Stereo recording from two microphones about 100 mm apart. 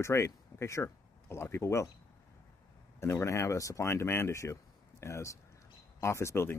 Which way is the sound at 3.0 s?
25° left (ahead or behind).